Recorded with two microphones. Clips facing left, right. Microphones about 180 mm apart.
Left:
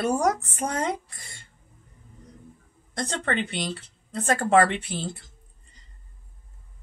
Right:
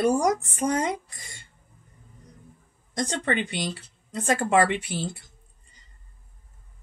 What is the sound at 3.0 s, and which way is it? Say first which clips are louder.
Speech: right 1 dB; 15° right (ahead or behind).